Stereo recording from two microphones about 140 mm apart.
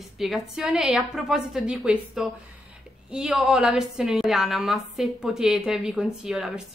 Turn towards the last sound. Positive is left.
turn(degrees=-5)  # may be behind; listen again after turning